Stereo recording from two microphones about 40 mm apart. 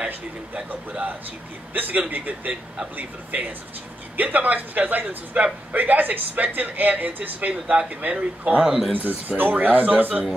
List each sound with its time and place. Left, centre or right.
0.7 s a man's voice: right
8.1 s speech: right
8.6 s speech: centre
8.9 s speech: right